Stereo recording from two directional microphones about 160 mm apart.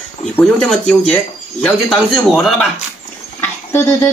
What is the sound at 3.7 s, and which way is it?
Dishes, 15° left (ahead or behind).